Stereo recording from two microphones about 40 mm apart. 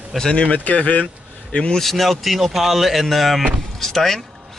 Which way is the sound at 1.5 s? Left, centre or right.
Left.